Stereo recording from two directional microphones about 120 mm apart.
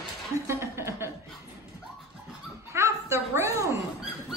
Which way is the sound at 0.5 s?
20° right (ahead or behind).